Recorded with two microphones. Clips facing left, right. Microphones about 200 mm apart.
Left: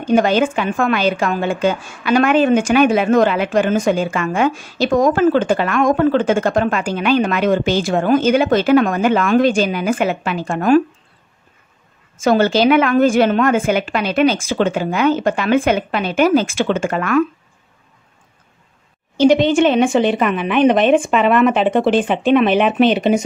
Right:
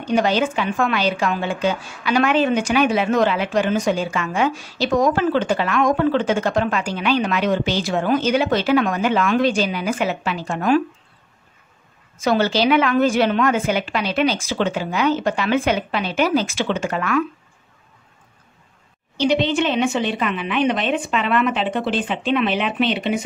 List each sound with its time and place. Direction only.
0.0 s a woman's voice: 50° left (ahead or behind)
12.2 s a woman's voice: 50° left (ahead or behind)
19.1 s a woman's voice: 45° left (ahead or behind)